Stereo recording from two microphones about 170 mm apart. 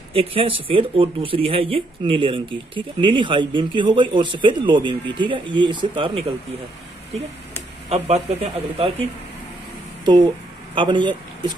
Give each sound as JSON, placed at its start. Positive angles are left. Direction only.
{"t": 0.1, "sound": "speech", "side_deg": -35}
{"t": 7.9, "sound": "speech", "side_deg": -40}
{"t": 10.7, "sound": "speech", "side_deg": -30}